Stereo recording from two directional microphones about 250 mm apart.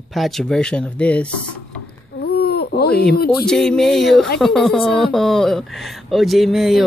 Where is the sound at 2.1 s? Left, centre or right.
Left.